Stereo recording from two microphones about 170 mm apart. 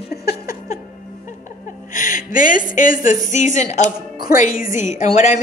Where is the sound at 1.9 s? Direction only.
50° left (ahead or behind).